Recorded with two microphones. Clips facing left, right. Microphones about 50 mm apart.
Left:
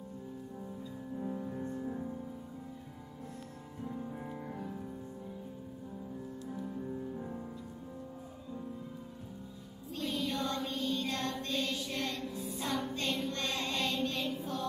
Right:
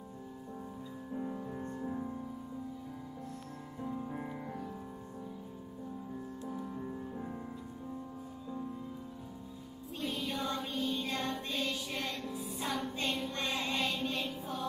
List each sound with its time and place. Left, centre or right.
1.1 s music: centre
3.8 s music: centre
7.2 s music: centre
9.9 s music: centre